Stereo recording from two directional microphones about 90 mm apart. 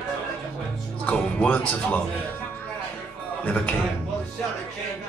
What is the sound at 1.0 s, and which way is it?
Music, 15° left (ahead or behind).